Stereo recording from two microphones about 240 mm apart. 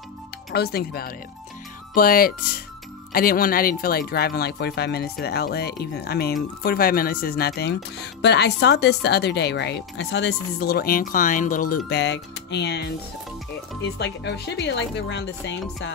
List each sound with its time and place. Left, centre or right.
0.5 s speech: left